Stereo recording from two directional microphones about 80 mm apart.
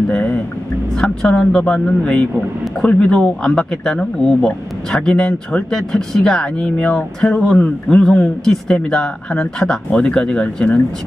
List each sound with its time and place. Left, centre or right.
0.1 s speech: centre